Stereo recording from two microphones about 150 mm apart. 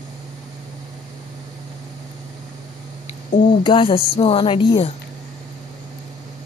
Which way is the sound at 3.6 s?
35° left (ahead or behind).